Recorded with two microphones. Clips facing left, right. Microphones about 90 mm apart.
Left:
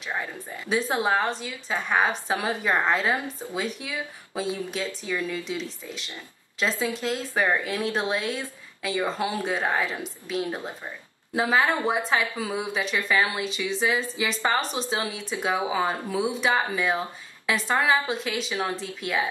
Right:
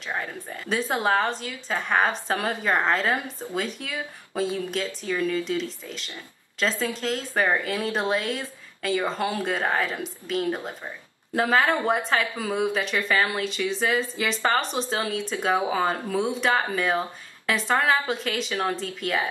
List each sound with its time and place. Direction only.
0.7 s speech: 5° left (ahead or behind)